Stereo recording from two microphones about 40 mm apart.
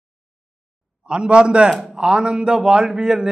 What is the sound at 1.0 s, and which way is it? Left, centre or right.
A man's voice, right.